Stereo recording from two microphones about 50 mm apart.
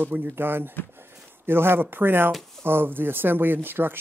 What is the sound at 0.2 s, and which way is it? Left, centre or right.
Speech, right.